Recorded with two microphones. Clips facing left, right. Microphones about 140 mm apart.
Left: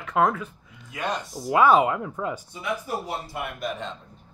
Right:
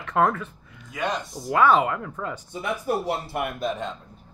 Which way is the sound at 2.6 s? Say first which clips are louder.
Right 4 dB; 50° right (ahead or behind).